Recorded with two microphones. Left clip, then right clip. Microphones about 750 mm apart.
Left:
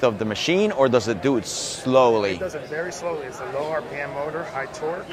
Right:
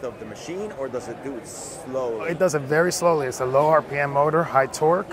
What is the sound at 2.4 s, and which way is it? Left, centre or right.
Speech, right.